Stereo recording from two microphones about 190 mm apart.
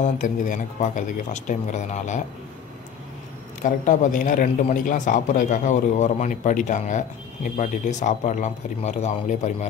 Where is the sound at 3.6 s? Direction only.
40° left (ahead or behind).